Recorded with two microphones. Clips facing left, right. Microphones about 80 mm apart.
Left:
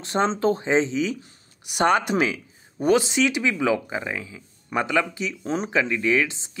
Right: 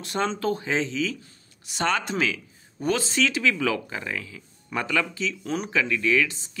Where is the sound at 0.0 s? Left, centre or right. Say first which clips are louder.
Left 4 dB; left.